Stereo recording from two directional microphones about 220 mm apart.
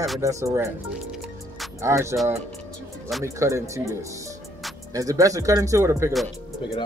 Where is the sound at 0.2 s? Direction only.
15° right (ahead or behind).